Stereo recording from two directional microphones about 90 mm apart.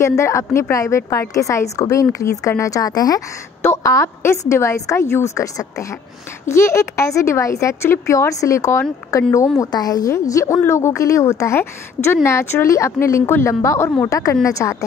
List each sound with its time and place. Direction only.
0.0 s a woman's voice: 35° left (ahead or behind)
3.6 s a woman's voice: 30° left (ahead or behind)
9.6 s a woman's voice: 45° left (ahead or behind)
10.1 s a woman's voice: 35° left (ahead or behind)